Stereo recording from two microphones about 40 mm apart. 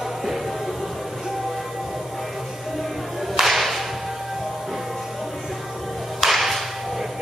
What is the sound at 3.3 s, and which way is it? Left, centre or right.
Whip, centre.